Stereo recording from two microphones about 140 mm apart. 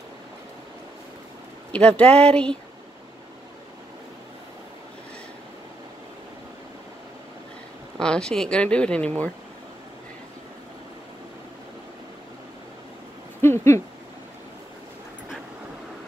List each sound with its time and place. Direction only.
1.7 s speech: 10° left (ahead or behind)
8.0 s speech: 5° left (ahead or behind)
13.4 s a sound: 15° left (ahead or behind)